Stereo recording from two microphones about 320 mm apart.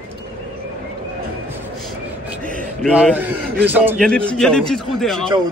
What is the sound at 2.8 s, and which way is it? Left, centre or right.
A man's voice, centre.